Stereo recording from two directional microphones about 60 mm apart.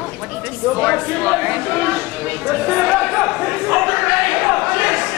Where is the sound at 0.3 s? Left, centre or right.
Right.